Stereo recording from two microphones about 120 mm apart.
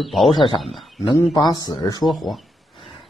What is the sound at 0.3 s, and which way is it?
Speech, 40° left (ahead or behind).